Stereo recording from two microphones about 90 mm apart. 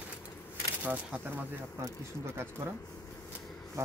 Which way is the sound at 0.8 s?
20° right (ahead or behind).